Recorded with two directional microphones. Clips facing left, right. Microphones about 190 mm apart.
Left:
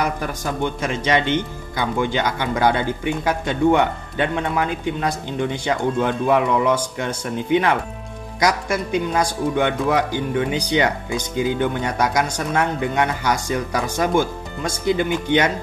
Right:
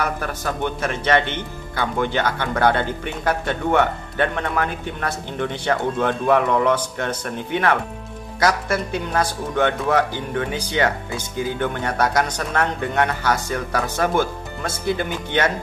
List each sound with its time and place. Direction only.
0.0 s speech: 15° left (ahead or behind)